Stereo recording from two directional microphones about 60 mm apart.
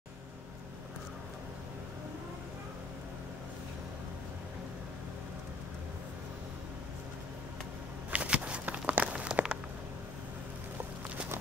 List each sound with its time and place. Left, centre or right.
8.1 s walk: right